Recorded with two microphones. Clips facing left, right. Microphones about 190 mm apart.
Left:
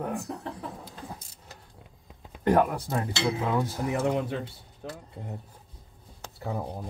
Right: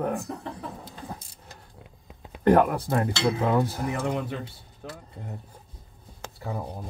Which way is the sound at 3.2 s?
50° right (ahead or behind).